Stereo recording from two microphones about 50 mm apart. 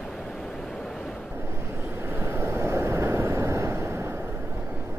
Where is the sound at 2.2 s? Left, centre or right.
Right.